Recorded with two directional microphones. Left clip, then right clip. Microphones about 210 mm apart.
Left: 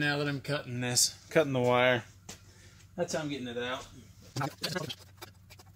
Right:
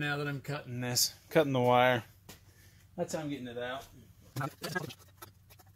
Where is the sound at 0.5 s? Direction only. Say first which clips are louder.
Left 3 dB; 15° right (ahead or behind); by 2.0 s 35° right (ahead or behind).